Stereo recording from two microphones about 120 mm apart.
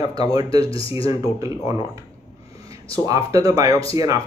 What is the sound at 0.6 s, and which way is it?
Speech, 50° left (ahead or behind).